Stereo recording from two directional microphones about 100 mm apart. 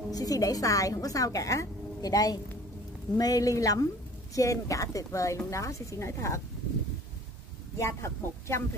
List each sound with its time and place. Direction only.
0.1 s a woman's voice: 40° left (ahead or behind)
7.8 s speech: 30° left (ahead or behind)